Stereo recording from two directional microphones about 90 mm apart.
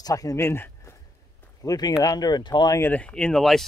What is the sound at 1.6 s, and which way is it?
Speech, 45° left (ahead or behind).